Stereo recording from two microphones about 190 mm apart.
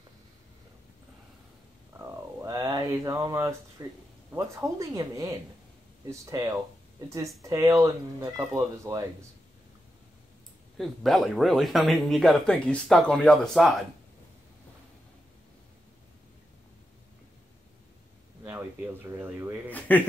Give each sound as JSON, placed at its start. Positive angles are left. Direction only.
{"t": 2.0, "sound": "a sound", "side_deg": -15}
{"t": 3.8, "sound": "speech", "side_deg": -20}
{"t": 10.8, "sound": "speech", "side_deg": 0}
{"t": 19.0, "sound": "speech", "side_deg": -15}
{"t": 19.9, "sound": "speech", "side_deg": 10}